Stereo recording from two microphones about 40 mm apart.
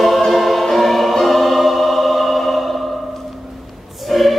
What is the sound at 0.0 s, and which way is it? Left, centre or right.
Music, centre.